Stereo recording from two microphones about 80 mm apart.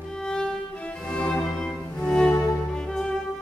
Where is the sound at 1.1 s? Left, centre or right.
Centre.